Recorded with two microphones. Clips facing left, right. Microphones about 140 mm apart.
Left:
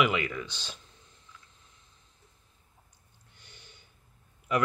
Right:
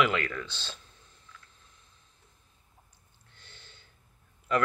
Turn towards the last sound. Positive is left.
turn(degrees=10)  # may be behind; listen again after turning